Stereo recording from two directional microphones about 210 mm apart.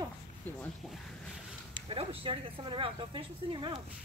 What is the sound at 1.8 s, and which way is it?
Speech, 25° right (ahead or behind).